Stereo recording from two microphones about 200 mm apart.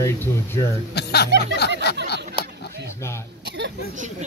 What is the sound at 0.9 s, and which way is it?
Speech, 55° left (ahead or behind).